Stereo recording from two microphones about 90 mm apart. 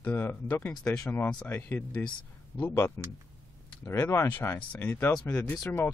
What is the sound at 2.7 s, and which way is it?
Speech, 30° left (ahead or behind).